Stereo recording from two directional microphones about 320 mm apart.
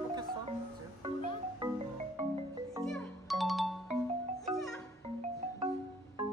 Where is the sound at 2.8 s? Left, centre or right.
Centre.